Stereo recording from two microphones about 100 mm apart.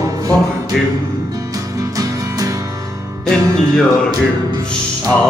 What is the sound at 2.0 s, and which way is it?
Music, 35° right (ahead or behind).